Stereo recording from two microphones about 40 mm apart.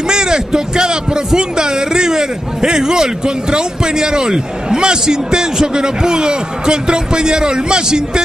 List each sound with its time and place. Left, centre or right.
0.1 s a man's voice: centre